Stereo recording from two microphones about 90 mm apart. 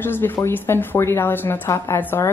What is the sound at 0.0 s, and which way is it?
A woman's voice, 25° left (ahead or behind).